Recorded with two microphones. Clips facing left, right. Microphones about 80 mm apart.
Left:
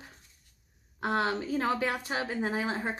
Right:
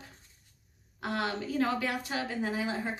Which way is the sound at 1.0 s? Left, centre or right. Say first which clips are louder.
Left 4 dB; left.